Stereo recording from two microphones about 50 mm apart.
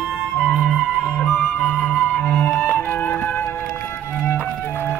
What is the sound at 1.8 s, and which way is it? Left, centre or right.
Flute, left.